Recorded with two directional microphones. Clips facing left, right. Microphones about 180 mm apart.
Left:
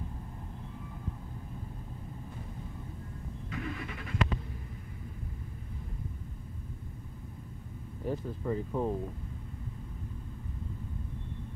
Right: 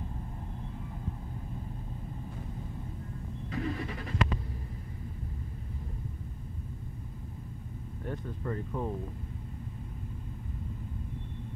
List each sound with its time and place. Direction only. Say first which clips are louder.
3.5 s vehicle: right 4 dB; 35° right (ahead or behind)
8.0 s speech: left 3 dB; 5° left (ahead or behind)